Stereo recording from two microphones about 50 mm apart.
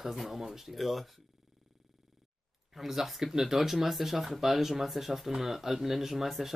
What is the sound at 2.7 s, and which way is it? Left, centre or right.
Speech, centre.